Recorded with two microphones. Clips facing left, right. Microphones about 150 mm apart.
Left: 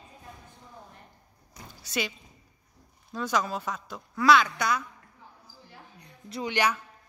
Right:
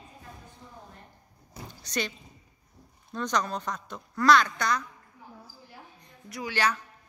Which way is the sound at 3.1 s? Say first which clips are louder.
Left 1 dB; 5° left (ahead or behind).